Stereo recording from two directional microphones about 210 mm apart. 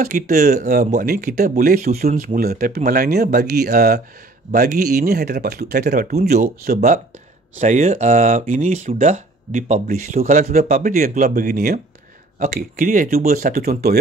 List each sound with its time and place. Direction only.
0.0 s speech: 40° right (ahead or behind)
4.5 s speech: 35° right (ahead or behind)